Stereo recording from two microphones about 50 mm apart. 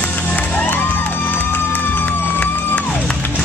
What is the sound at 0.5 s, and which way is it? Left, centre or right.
Music, left.